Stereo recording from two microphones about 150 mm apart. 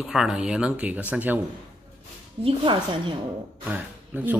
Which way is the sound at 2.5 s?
35° right (ahead or behind).